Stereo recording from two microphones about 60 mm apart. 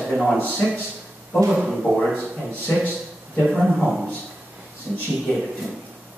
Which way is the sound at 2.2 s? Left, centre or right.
Right.